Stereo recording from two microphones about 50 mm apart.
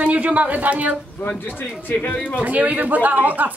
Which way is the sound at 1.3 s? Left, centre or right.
Left.